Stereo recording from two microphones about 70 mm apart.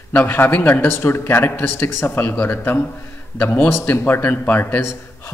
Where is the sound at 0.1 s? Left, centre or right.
Left.